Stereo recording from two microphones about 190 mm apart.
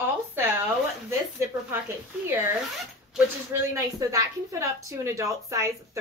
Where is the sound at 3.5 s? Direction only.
15° right (ahead or behind).